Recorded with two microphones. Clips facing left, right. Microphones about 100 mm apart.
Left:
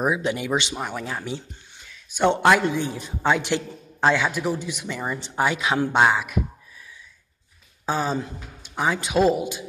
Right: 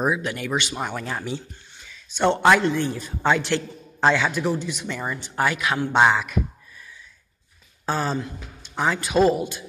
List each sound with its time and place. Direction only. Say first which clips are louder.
0.2 s speech: left 2 dB; 20° left (ahead or behind)
0.7 s a man's voice: right 1 dB; 5° left (ahead or behind)
5.1 s speech: left 1 dB; 20° left (ahead or behind)
5.9 s a man's voice: right 3 dB; 5° left (ahead or behind)
7.8 s a man's voice: even; 10° left (ahead or behind)